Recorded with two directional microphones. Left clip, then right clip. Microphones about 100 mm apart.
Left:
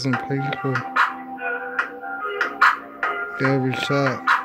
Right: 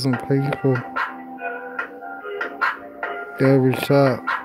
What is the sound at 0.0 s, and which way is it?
Speech, 35° right (ahead or behind).